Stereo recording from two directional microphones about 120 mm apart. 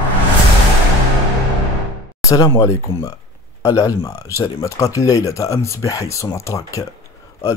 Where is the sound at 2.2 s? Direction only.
30° left (ahead or behind).